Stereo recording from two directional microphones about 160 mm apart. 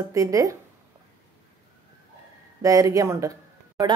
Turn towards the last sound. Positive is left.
turn(degrees=-20)  # may be behind; listen again after turning